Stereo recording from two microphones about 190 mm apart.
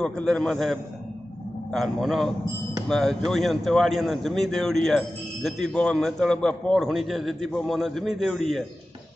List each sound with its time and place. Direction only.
0.0 s a man's voice: 5° left (ahead or behind)